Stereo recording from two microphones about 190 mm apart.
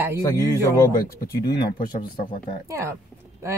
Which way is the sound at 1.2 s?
50° left (ahead or behind).